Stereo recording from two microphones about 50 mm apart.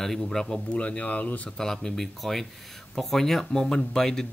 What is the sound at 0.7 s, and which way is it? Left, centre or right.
Speech, left.